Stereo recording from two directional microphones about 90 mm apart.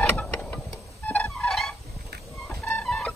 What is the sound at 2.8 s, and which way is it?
Music, 10° left (ahead or behind).